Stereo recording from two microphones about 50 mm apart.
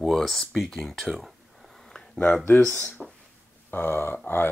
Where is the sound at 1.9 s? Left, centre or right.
Centre.